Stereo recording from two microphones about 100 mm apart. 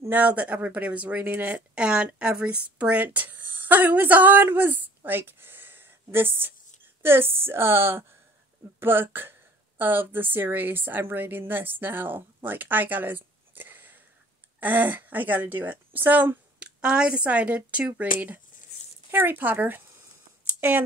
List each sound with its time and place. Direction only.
0.0 s a woman's voice: 15° right (ahead or behind)